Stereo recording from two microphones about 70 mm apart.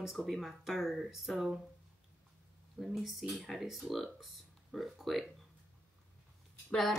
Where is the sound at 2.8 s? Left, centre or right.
Centre.